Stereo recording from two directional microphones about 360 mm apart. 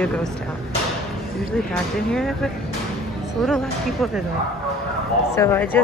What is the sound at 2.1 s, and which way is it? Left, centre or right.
Speech, centre.